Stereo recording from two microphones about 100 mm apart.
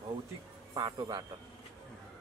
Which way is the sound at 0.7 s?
45° right (ahead or behind).